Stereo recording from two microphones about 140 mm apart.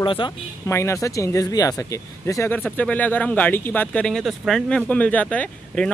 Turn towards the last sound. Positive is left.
turn(degrees=5)  # may be behind; listen again after turning